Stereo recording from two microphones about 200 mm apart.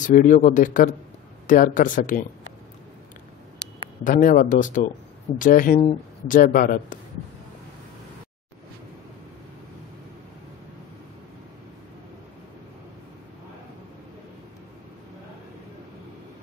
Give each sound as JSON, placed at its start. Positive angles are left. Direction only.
{"t": 0.0, "sound": "speech", "side_deg": 40}
{"t": 4.0, "sound": "a man's voice", "side_deg": 40}